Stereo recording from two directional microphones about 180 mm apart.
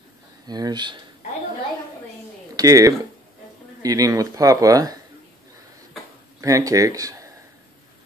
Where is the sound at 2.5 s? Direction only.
20° right (ahead or behind).